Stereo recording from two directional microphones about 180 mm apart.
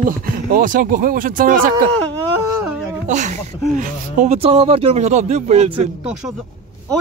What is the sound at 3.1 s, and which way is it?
Speech, 40° right (ahead or behind).